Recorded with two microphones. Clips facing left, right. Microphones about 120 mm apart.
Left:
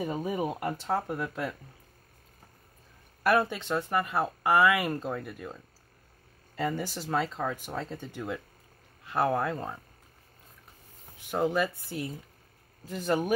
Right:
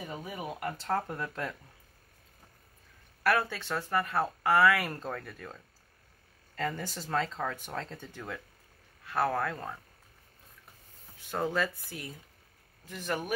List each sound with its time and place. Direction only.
0.0 s speech: 25° left (ahead or behind)
0.8 s speech: 10° left (ahead or behind)
3.3 s speech: 20° left (ahead or behind)
11.1 s speech: 15° left (ahead or behind)